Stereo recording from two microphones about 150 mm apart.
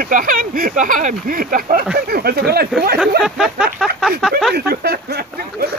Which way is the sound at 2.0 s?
90° right.